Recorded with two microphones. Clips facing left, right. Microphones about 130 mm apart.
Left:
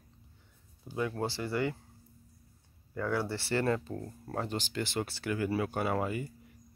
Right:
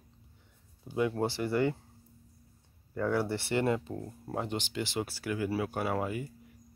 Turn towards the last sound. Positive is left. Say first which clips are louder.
# even
turn(degrees=-5)  # may be behind; listen again after turning